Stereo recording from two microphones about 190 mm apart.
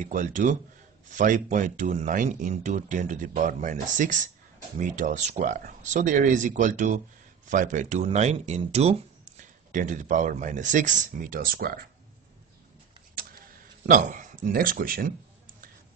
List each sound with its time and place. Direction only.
0.0 s speech: 40° right (ahead or behind)
13.8 s speech: 45° right (ahead or behind)